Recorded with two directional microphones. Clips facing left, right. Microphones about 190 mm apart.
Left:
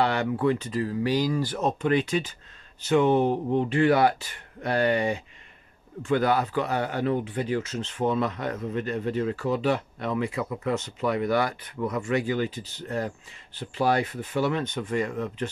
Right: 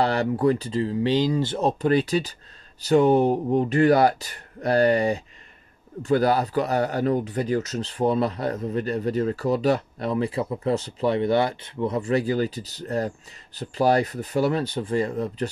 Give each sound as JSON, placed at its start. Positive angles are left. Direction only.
{"t": 0.0, "sound": "speech", "side_deg": -35}